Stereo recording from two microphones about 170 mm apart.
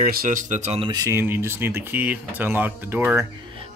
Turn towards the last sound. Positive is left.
turn(degrees=-10)  # may be behind; listen again after turning